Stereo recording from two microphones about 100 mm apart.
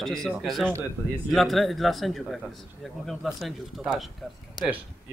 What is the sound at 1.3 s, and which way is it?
A man's voice, centre (ahead or behind).